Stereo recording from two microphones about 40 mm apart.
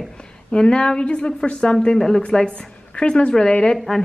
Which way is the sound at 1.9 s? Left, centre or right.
Centre.